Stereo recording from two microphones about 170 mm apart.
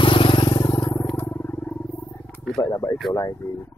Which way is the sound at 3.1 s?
20° left (ahead or behind).